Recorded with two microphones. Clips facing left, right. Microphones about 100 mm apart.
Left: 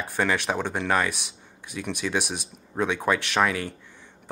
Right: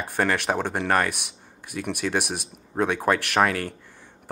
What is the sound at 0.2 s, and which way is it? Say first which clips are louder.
Speech: right 2 dB; 50° right (ahead or behind).